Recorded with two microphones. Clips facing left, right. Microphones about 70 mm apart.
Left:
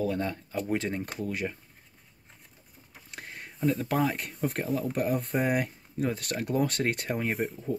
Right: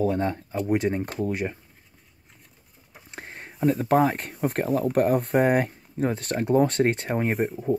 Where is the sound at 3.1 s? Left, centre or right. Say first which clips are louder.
Right 3 dB; right.